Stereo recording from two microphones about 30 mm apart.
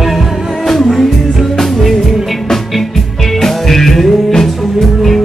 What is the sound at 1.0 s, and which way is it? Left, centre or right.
Music, centre.